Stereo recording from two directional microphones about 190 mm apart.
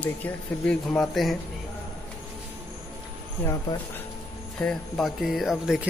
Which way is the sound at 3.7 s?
20° left (ahead or behind).